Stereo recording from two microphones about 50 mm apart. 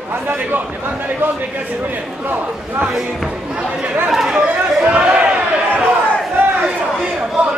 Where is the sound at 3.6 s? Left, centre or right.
Centre.